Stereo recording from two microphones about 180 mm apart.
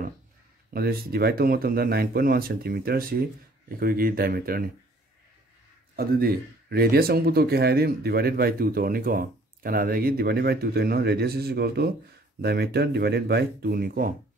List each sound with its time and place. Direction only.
0.7 s speech: 60° right (ahead or behind)
5.9 s speech: 60° right (ahead or behind)